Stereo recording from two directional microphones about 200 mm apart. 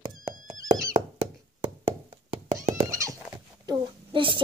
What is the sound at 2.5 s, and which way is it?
Goat, 15° right (ahead or behind).